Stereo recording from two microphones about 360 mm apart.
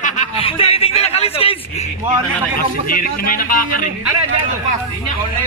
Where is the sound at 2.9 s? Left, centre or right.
Left.